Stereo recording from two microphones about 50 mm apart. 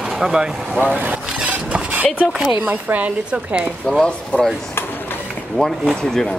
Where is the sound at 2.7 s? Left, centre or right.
Right.